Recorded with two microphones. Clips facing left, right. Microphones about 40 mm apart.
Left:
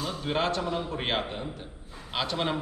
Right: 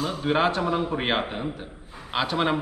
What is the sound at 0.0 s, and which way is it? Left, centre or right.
Speech, centre.